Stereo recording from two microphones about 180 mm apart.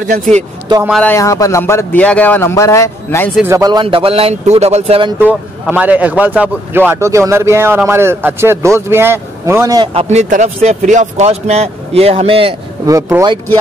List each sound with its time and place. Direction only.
0.7 s speech: 25° right (ahead or behind)
1.0 s a man's voice: 15° left (ahead or behind)
3.4 s speech: 20° right (ahead or behind)
5.2 s a man's voice: 10° right (ahead or behind)
9.9 s speech: 40° right (ahead or behind)
12.8 s speech: 20° right (ahead or behind)